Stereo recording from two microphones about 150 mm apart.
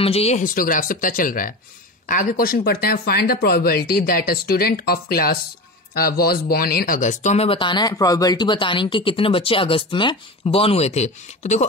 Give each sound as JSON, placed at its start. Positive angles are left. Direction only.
{"t": 0.0, "sound": "speech", "side_deg": 40}
{"t": 0.4, "sound": "speech", "side_deg": 65}
{"t": 7.5, "sound": "speech", "side_deg": 30}